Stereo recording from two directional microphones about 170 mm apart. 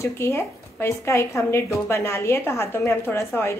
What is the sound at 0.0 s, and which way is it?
A woman's voice, 15° left (ahead or behind).